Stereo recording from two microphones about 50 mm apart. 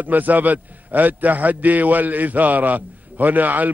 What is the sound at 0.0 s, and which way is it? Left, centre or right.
A man's voice, right.